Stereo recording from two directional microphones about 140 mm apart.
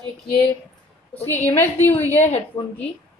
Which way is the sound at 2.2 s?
50° left (ahead or behind).